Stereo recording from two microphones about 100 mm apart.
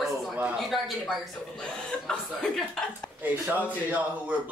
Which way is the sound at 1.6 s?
10° left (ahead or behind).